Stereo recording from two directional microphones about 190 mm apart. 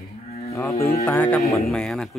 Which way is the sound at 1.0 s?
10° left (ahead or behind).